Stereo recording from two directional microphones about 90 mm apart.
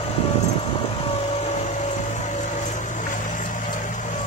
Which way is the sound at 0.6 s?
90° left.